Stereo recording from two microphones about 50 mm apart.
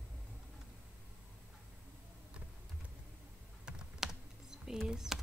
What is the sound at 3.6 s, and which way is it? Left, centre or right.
Computer keyboard, centre.